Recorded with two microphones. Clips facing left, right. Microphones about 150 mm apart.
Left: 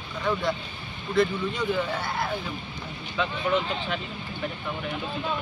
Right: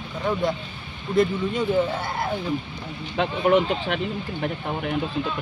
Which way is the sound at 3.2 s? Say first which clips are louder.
Right 6 dB; 65° right (ahead or behind).